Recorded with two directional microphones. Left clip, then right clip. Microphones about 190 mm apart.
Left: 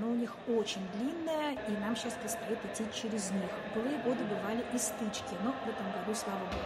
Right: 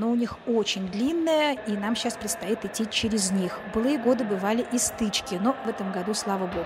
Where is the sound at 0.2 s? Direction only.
45° right (ahead or behind).